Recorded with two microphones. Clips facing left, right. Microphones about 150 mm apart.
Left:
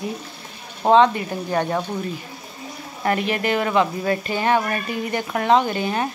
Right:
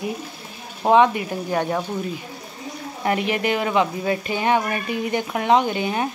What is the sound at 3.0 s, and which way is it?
Speech, 10° right (ahead or behind).